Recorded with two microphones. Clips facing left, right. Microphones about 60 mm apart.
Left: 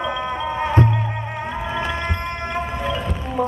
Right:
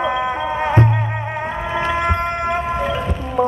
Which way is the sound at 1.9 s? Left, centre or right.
Centre.